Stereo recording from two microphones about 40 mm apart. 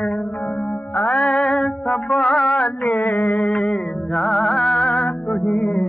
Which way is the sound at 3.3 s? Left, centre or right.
Centre.